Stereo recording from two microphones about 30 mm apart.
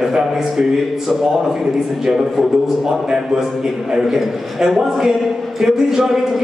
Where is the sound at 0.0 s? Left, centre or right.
Centre.